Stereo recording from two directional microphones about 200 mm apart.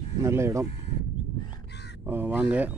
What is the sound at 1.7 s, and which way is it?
Crow, 60° left (ahead or behind).